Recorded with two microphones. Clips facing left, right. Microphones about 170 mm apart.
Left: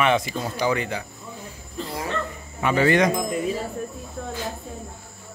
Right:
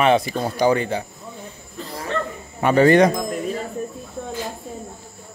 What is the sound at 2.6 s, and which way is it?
Speech, 40° right (ahead or behind).